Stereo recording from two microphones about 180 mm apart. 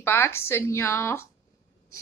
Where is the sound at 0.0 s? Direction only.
15° left (ahead or behind).